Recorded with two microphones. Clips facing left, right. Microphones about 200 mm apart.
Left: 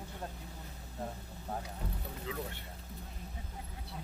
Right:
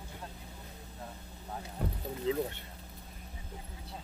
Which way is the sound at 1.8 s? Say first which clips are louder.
Right 6 dB; 55° right (ahead or behind).